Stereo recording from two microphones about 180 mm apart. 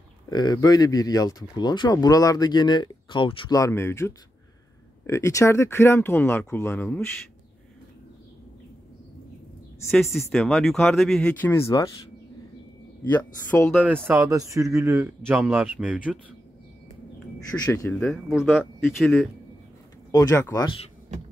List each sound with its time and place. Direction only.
0.3 s speech: 20° left (ahead or behind)
10.1 s speech: centre (ahead or behind)
13.1 s speech: 10° left (ahead or behind)
13.8 s speech: 10° right (ahead or behind)
17.5 s speech: 5° left (ahead or behind)
20.1 s speech: 20° left (ahead or behind)